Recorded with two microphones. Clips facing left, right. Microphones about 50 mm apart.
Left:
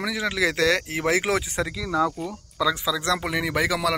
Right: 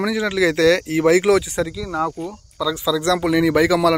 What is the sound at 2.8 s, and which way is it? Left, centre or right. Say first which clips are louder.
Speech: right 6 dB; left.